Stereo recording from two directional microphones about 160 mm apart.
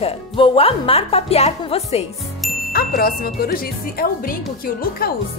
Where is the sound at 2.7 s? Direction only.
65° left (ahead or behind).